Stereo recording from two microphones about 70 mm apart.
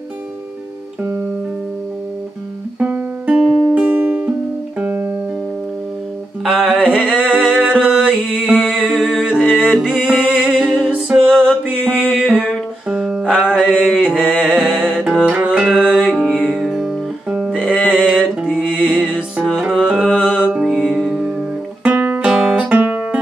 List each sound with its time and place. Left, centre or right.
2.8 s music: right
3.3 s music: centre
3.7 s music: right
6.4 s music: centre
11.8 s music: centre
12.1 s music: centre
13.7 s mantra: centre
15.0 s music: centre
21.8 s music: right
22.3 s music: centre
22.7 s music: right